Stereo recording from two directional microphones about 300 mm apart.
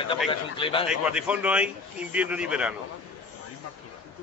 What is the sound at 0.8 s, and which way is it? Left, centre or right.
A man's voice, centre.